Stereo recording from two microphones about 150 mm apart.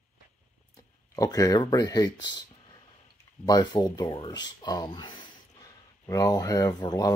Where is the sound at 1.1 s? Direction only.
25° left (ahead or behind).